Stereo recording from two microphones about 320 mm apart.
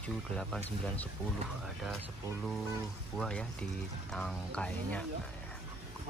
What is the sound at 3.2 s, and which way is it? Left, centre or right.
Speech, centre.